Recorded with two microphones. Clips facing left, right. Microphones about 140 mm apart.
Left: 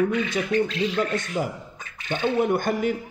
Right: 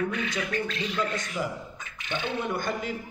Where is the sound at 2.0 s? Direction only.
45° left (ahead or behind).